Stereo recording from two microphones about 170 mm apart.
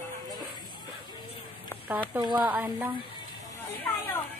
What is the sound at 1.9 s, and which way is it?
Speech, 10° right (ahead or behind).